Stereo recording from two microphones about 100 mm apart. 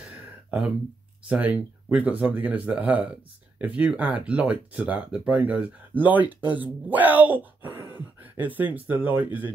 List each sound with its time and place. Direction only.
1.3 s speech: 15° right (ahead or behind)